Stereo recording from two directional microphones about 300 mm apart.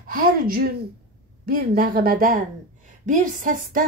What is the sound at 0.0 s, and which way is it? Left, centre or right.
Speech, right.